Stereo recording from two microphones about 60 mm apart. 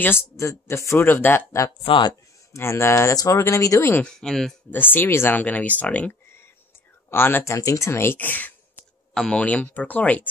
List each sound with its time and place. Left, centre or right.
0.0 s speech: left
0.4 s speech: left
0.9 s speech: left
2.5 s speech: left
4.0 s speech: centre
4.6 s speech: left
5.4 s speech: left
7.1 s speech: left
7.4 s speech: left
8.2 s speech: left
9.1 s speech: centre
9.4 s speech: left